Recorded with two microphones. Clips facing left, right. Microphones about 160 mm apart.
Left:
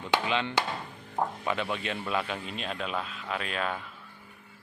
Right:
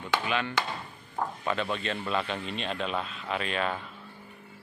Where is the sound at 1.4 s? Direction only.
15° left (ahead or behind).